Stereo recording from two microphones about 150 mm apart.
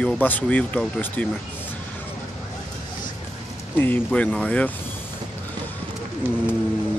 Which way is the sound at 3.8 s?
10° left (ahead or behind).